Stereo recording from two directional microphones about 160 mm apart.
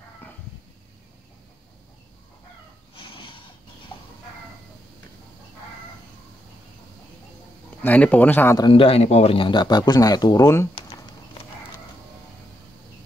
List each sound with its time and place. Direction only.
0.2 s a sound: 10° left (ahead or behind)
7.8 s speech: 10° left (ahead or behind)
8.5 s speech: 30° left (ahead or behind)